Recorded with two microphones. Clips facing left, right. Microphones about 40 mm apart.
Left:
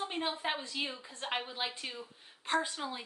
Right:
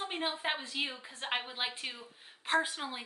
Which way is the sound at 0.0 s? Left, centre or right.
Right.